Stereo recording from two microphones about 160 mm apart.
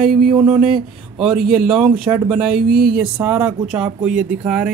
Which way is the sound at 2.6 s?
70° right (ahead or behind).